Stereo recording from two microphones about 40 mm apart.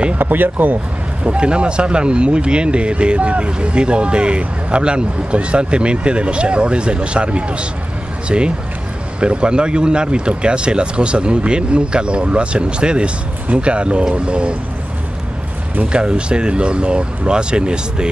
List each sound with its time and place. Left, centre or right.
0.2 s speech: right
1.2 s speech: right
15.8 s speech: right